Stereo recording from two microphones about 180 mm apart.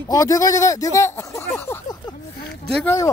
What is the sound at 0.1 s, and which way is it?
Speech, 20° left (ahead or behind).